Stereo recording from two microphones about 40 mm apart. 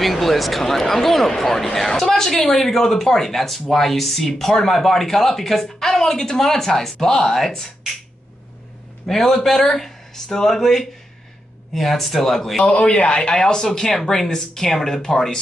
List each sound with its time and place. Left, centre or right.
0.0 s speech: centre
9.0 s speech: centre
12.7 s a man's voice: left; by 15.3 s centre